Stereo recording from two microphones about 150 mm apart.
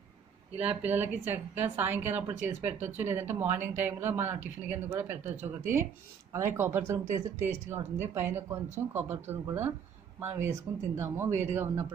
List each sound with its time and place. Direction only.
0.7 s a woman's voice: 10° right (ahead or behind)
5.3 s speech: 50° right (ahead or behind)
6.3 s a woman's voice: 15° right (ahead or behind)